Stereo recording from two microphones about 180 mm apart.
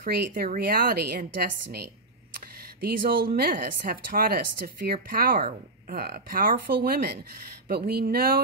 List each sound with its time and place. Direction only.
0.0 s speech: 55° right (ahead or behind)